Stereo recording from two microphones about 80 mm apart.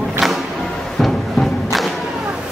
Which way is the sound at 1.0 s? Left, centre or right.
Centre.